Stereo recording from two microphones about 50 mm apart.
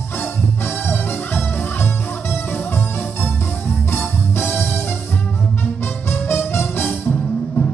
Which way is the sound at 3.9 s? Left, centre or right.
Left.